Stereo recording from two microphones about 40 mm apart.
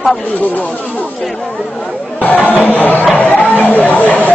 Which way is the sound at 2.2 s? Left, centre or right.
Left.